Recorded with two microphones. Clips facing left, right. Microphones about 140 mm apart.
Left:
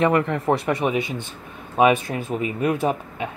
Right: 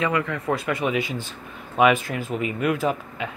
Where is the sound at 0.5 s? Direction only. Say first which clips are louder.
Left 2 dB; 25° left (ahead or behind).